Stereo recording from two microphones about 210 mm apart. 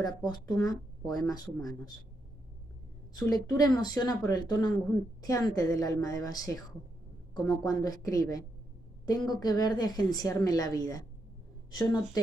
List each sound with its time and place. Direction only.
0.0 s a woman's voice: 20° left (ahead or behind)
3.2 s a woman's voice: 20° left (ahead or behind)